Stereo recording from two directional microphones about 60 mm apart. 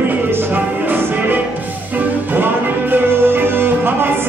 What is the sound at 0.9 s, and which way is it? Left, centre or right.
Music, right.